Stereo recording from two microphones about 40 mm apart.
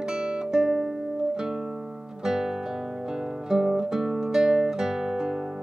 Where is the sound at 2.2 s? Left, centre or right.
Centre.